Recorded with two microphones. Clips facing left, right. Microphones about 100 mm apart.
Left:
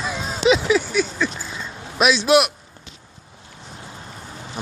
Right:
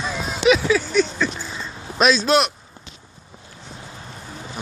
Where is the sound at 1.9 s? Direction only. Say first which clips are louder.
Left 1 dB; 10° left (ahead or behind).